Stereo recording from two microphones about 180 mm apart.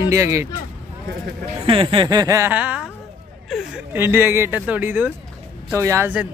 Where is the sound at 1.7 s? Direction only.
30° right (ahead or behind); by 2.8 s 10° right (ahead or behind).